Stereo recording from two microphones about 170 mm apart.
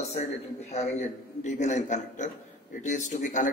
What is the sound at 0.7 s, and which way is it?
A man's voice, 40° left (ahead or behind).